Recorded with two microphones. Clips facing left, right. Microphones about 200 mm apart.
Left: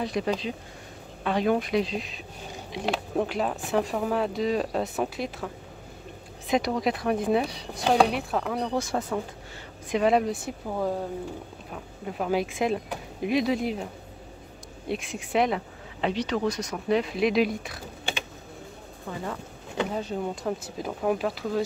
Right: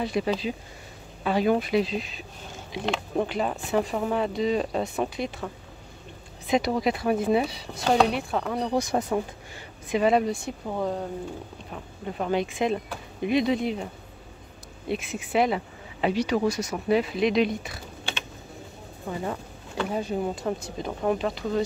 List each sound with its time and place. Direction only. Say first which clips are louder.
0.0 s speech: right 1 dB; centre (ahead or behind)
6.5 s speech: right 1 dB; centre (ahead or behind)
8.6 s speech: right 3 dB; 15° right (ahead or behind)
9.8 s speech: right 1 dB; centre (ahead or behind)
14.9 s speech: right 1 dB; 5° right (ahead or behind)
19.1 s speech: right 3 dB; 15° right (ahead or behind)
20.4 s speech: right 1 dB; 5° left (ahead or behind)